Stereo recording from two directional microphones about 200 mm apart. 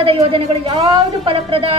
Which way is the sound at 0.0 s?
25° right (ahead or behind).